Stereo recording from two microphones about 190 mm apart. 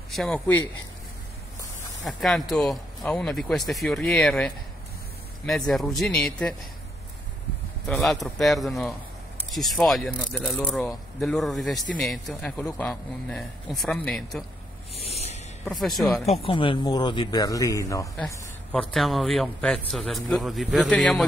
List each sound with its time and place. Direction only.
0.1 s speech: 5° left (ahead or behind)
2.0 s speech: centre (ahead or behind)
5.5 s speech: centre (ahead or behind)
7.9 s speech: centre (ahead or behind)
12.5 s a man's voice: 15° left (ahead or behind)
12.8 s speech: centre (ahead or behind)
15.0 s a sound: 35° left (ahead or behind)
15.6 s speech: centre (ahead or behind)
16.3 s speech: 30° left (ahead or behind)
18.7 s speech: centre (ahead or behind)